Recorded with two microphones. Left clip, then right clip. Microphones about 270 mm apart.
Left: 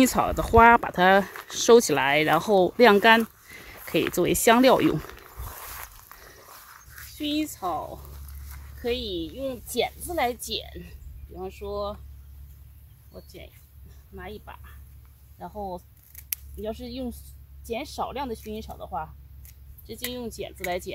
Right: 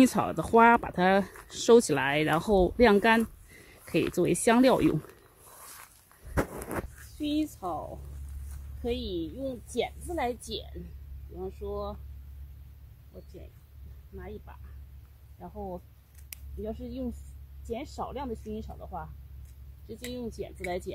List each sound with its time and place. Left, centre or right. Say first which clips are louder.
0.0 s speech: left 3 dB; centre
5.6 s a sound: left 6 dB; centre
7.2 s speech: left 3 dB; centre
14.1 s speech: left 5 dB; centre